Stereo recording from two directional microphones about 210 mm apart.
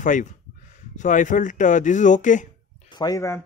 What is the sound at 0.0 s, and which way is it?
Speech, 40° left (ahead or behind).